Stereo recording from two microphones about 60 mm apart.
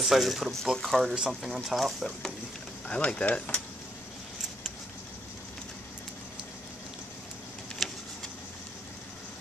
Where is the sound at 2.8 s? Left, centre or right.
Centre.